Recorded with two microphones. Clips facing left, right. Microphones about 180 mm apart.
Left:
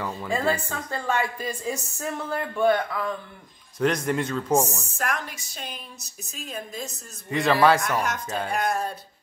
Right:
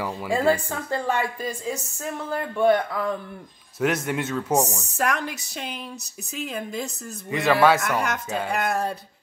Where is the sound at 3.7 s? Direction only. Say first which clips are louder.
Left 1 dB; 5° right (ahead or behind).